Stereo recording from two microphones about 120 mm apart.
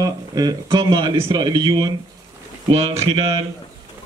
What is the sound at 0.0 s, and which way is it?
Speech, 30° right (ahead or behind).